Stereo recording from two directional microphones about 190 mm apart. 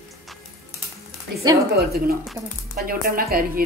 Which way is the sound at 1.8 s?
55° right (ahead or behind).